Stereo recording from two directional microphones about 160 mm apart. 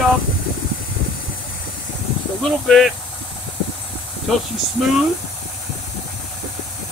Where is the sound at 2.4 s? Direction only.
Centre (ahead or behind).